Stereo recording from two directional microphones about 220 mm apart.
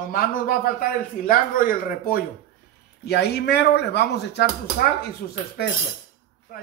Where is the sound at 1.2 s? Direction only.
40° left (ahead or behind).